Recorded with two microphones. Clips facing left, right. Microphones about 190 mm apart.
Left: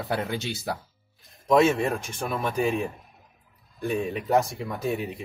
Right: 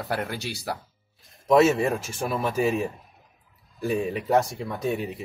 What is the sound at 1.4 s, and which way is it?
Speech, centre (ahead or behind).